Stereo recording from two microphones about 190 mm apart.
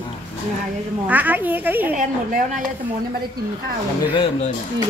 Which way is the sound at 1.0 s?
10° right (ahead or behind).